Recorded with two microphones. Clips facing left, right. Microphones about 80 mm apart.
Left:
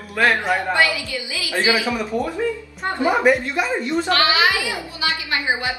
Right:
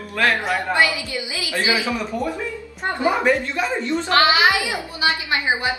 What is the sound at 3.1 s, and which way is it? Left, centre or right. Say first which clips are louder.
Speech: left 2 dB; centre.